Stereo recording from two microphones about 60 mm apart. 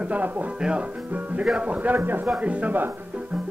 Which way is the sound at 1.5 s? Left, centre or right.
Right.